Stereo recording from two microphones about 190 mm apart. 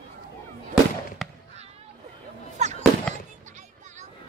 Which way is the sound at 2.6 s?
35° right (ahead or behind).